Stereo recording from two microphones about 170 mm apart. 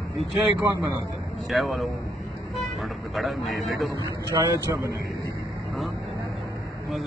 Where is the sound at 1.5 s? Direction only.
Centre (ahead or behind).